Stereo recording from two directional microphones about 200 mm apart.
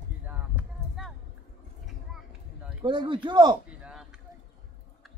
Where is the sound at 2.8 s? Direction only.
25° right (ahead or behind).